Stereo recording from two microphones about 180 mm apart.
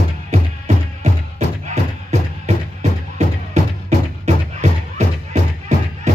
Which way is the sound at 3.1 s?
40° right (ahead or behind).